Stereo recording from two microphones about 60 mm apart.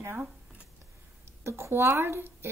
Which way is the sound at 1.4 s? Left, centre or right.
Right.